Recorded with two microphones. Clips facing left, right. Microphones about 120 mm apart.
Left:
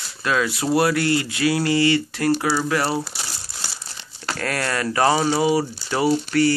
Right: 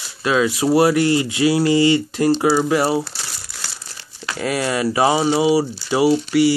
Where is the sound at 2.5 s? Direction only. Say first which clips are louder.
Right 5 dB; 15° right (ahead or behind).